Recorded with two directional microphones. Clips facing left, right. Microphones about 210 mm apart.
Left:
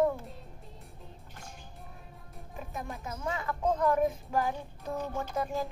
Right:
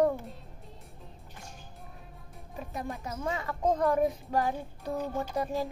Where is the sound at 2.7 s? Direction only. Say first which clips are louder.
Right 3 dB; 35° right (ahead or behind).